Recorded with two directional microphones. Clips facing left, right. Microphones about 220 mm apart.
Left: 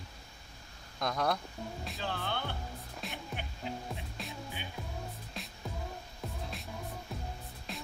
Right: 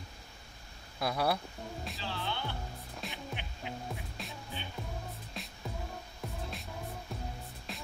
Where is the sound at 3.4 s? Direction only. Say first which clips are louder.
Left 3 dB; 45° left (ahead or behind).